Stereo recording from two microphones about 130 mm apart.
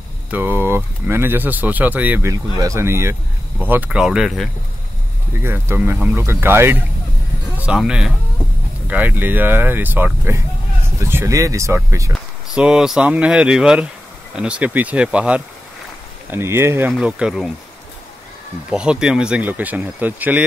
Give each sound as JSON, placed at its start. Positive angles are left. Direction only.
{"t": 0.3, "sound": "speech", "side_deg": -15}
{"t": 2.5, "sound": "speech", "side_deg": -25}
{"t": 5.4, "sound": "speech", "side_deg": -15}
{"t": 7.5, "sound": "speech", "side_deg": -5}
{"t": 12.1, "sound": "speech", "side_deg": -5}
{"t": 18.7, "sound": "speech", "side_deg": -5}